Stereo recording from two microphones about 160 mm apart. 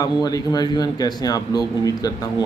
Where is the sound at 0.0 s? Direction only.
25° left (ahead or behind).